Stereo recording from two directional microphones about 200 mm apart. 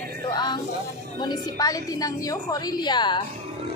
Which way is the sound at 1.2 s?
20° left (ahead or behind).